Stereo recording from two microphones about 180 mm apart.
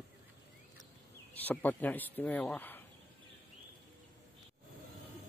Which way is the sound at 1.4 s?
10° left (ahead or behind).